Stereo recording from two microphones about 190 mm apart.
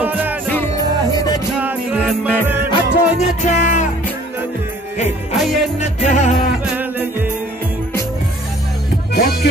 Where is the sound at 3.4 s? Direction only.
40° left (ahead or behind).